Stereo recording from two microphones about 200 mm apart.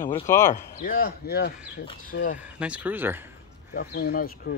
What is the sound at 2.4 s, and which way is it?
Speech, 5° right (ahead or behind).